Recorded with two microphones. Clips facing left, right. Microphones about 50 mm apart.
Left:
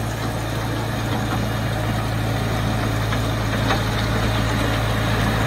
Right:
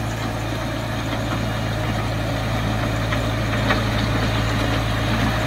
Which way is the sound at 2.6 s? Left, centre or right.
Centre.